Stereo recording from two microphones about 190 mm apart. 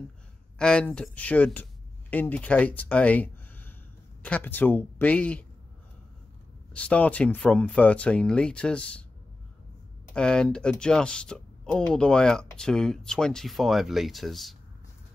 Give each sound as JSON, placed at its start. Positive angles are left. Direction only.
{"t": 0.6, "sound": "speech", "side_deg": 5}
{"t": 6.7, "sound": "speech", "side_deg": 5}
{"t": 10.1, "sound": "speech", "side_deg": 5}